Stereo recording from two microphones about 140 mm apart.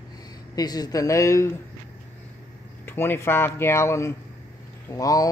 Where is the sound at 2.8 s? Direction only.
15° left (ahead or behind).